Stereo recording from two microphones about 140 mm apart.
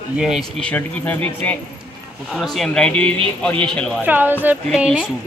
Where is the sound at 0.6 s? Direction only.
10° left (ahead or behind).